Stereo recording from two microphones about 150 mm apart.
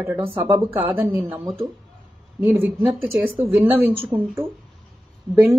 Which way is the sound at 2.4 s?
15° right (ahead or behind).